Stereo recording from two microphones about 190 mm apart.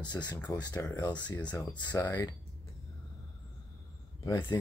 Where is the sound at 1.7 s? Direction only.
20° left (ahead or behind).